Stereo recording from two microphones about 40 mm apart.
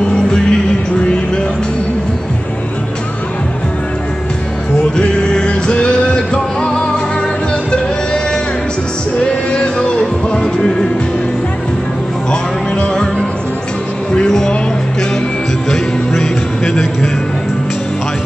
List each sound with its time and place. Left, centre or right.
0.1 s music: centre
4.9 s music: left
9.2 s music: left
12.3 s music: left
14.1 s music: centre
16.2 s music: centre